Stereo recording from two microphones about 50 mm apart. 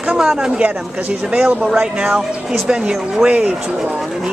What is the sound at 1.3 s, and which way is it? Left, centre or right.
Speech, centre.